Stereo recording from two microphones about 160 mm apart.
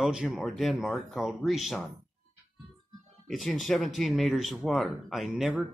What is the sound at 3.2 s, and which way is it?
Speech, centre (ahead or behind).